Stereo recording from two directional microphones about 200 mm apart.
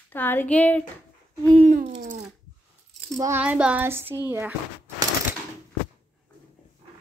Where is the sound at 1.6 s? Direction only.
35° right (ahead or behind).